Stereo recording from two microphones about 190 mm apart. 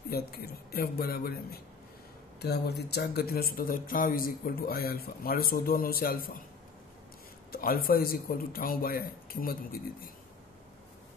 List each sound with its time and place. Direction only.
0.1 s speech: 55° left (ahead or behind)
7.5 s speech: 50° left (ahead or behind)